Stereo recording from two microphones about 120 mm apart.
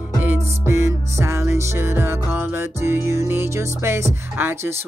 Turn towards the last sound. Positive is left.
turn(degrees=-20)  # may be behind; listen again after turning